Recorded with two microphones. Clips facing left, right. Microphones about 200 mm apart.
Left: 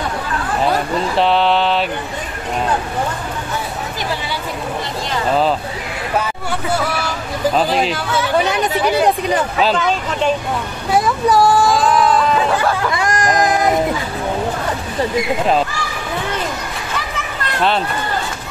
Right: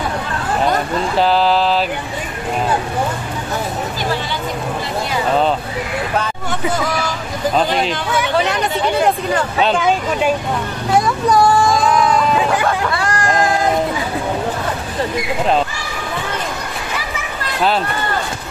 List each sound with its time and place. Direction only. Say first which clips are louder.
0.6 s speech: even; centre (ahead or behind)
7.5 s speech: right 1 dB; centre (ahead or behind)
9.8 s speech: right 2 dB; 10° right (ahead or behind)
10.9 s speech: even; centre (ahead or behind)
12.9 s speech: left 1 dB; 15° left (ahead or behind)